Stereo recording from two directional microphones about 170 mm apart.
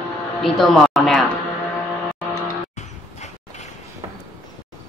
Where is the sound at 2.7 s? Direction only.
40° left (ahead or behind).